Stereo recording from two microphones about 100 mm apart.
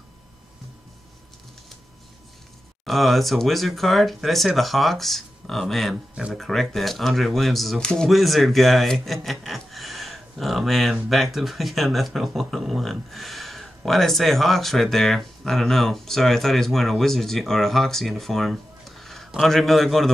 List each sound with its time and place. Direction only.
2.8 s speech: centre (ahead or behind)